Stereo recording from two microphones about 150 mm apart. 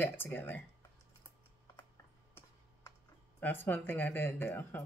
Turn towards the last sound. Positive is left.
turn(degrees=15)  # may be behind; listen again after turning